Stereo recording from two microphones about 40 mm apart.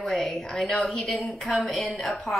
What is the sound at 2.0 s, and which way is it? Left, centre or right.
Speech, centre.